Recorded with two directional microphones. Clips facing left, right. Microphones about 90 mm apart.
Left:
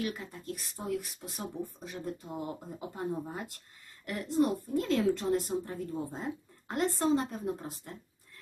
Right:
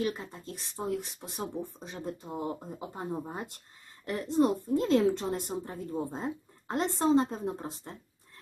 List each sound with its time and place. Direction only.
0.0 s a woman's voice: 25° right (ahead or behind)